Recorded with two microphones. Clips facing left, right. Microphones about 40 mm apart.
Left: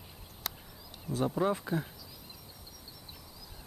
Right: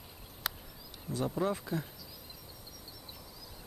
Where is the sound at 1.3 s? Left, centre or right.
Centre.